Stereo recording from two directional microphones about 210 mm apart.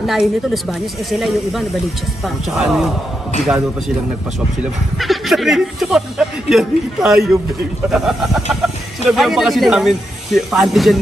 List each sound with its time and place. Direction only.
0.0 s speech: centre (ahead or behind)
4.9 s speech: centre (ahead or behind)